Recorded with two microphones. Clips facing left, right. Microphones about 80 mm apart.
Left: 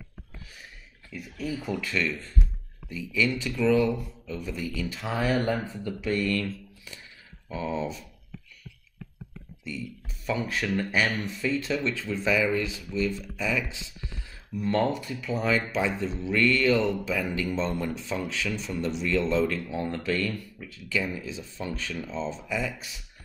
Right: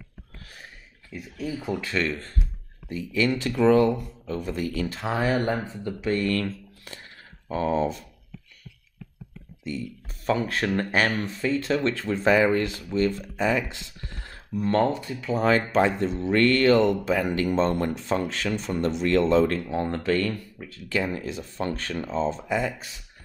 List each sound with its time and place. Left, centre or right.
1.1 s speech: right
9.7 s speech: right
14.5 s speech: right
16.0 s speech: right
20.7 s speech: right